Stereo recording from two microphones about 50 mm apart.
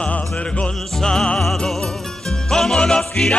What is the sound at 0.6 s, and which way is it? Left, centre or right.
Music, centre.